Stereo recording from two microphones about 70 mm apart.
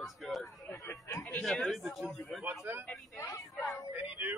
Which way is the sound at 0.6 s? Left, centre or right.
Left.